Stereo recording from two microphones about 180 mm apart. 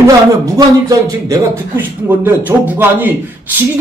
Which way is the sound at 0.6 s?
20° right (ahead or behind).